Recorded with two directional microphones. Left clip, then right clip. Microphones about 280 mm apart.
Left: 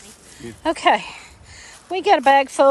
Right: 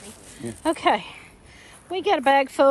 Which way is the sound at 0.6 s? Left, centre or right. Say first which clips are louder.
Left 4 dB; centre.